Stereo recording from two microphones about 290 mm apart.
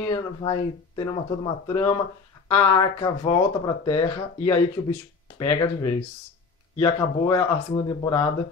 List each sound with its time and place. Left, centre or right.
0.0 s speech: centre